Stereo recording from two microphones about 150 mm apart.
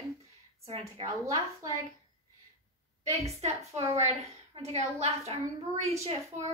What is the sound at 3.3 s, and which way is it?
A woman's voice, 45° right (ahead or behind).